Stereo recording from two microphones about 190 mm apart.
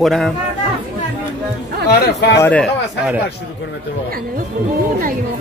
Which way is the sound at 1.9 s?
60° left (ahead or behind).